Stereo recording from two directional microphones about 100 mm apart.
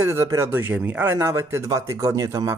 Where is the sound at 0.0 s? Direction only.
25° right (ahead or behind).